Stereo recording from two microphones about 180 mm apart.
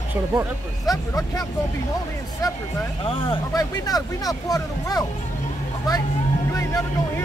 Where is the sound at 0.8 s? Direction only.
20° left (ahead or behind).